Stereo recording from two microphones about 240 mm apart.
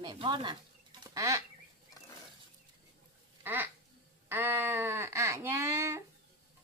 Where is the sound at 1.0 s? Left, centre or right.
Centre.